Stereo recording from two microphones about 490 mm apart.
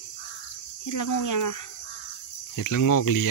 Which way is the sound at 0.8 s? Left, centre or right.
Left.